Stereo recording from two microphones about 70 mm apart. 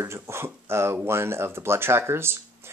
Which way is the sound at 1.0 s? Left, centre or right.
Right.